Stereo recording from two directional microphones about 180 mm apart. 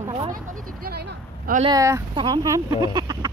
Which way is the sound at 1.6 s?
20° right (ahead or behind).